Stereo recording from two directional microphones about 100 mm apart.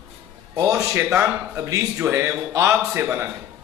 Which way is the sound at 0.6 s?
30° right (ahead or behind).